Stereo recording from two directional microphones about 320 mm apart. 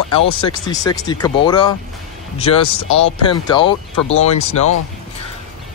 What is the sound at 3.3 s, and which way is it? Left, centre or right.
Speech, centre.